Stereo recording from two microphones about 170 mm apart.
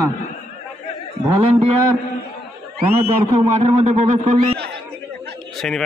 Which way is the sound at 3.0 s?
40° right (ahead or behind).